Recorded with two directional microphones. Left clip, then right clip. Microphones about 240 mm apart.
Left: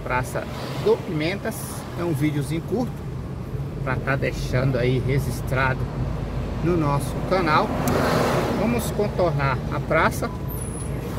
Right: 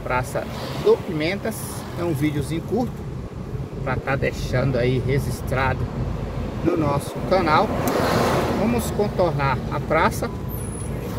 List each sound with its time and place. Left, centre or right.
0.8 s speech: centre
6.8 s speech: centre
7.8 s speech: right
8.7 s speech: centre